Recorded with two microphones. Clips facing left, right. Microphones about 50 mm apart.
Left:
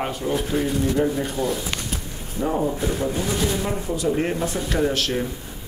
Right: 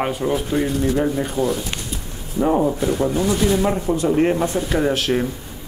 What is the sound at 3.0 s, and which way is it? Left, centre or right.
Speech, centre.